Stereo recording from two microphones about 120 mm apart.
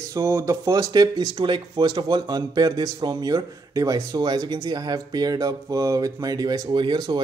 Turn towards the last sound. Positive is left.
turn(degrees=-40)  # may be behind; listen again after turning